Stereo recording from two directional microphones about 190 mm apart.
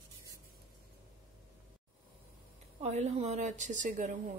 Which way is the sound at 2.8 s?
35° right (ahead or behind).